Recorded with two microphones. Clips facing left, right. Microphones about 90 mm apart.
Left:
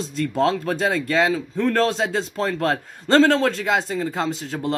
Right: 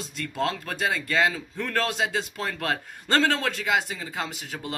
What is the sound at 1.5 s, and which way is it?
Speech, 25° left (ahead or behind).